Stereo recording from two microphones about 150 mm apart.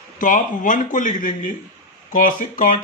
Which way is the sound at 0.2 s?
60° left (ahead or behind).